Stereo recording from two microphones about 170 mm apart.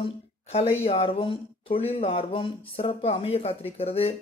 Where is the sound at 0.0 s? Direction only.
35° left (ahead or behind).